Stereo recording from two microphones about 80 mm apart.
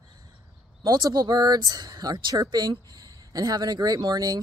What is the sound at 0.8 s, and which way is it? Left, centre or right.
Speech, right.